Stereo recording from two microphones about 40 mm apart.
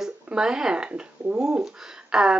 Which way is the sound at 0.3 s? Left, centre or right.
Centre.